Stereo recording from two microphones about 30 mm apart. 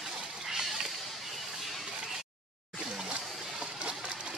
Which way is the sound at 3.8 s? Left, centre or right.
Right.